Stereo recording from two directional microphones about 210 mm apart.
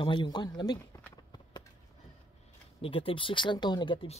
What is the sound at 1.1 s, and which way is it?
Clip-clop, 20° left (ahead or behind).